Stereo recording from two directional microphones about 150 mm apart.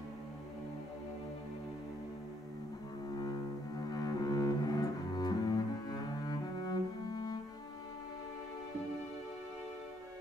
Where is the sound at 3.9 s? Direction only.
25° left (ahead or behind).